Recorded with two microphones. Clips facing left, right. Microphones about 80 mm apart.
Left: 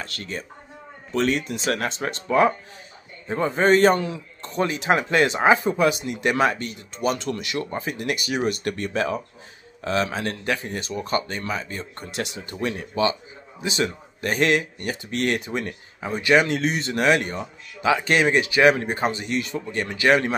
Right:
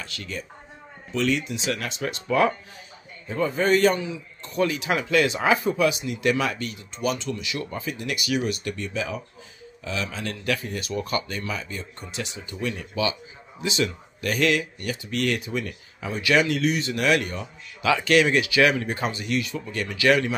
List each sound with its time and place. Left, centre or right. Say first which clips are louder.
0.0 s speech: left 2 dB; left
3.9 s a man's voice: left 4 dB; left
4.4 s speech: even; left
7.2 s speech: left 3 dB; left
10.4 s speech: left 1 dB; left
11.9 s speech: left 4 dB; left
13.6 s speech: left 1 dB; left